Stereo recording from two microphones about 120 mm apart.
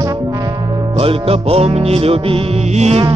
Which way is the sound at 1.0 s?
50° right (ahead or behind).